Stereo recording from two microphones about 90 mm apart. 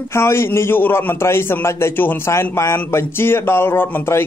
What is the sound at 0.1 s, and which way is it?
A man's voice, 30° left (ahead or behind).